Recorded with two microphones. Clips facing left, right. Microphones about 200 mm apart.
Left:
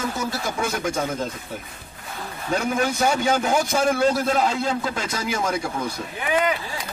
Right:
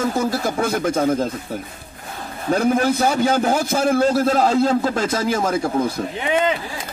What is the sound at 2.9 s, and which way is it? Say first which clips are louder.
A man's voice: right 3 dB; 35° right (ahead or behind).